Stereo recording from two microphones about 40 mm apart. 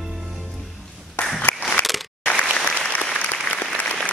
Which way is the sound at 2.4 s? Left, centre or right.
Left.